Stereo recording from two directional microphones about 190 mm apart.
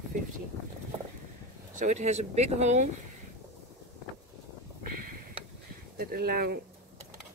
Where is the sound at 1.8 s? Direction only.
40° right (ahead or behind).